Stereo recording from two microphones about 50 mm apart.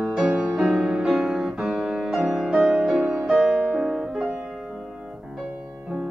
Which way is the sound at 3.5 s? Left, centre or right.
Centre.